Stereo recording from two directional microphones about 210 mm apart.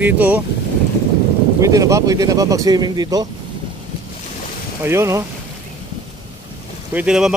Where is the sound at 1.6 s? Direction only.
15° right (ahead or behind).